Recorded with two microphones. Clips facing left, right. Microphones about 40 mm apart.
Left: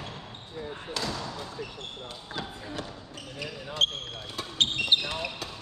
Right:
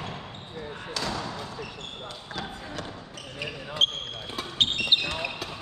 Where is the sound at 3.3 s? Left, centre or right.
Centre.